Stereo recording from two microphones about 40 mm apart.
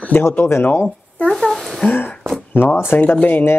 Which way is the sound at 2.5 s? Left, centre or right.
Left.